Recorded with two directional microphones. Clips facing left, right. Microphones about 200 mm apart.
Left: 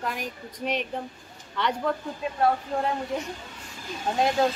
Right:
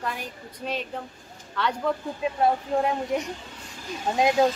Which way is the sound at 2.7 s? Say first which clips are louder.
Right 4 dB; 20° right (ahead or behind).